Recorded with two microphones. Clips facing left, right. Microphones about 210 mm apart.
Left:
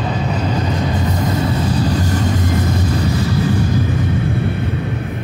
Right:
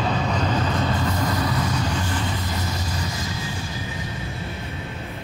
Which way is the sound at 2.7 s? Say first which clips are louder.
Left 11 dB; 60° left (ahead or behind).